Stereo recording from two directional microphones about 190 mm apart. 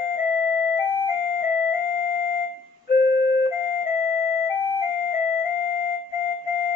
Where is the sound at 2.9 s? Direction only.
50° left (ahead or behind).